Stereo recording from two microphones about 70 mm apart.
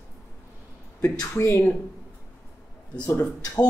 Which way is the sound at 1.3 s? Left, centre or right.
Left.